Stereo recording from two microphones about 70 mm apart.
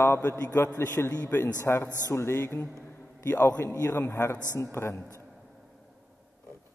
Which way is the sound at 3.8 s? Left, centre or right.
Left.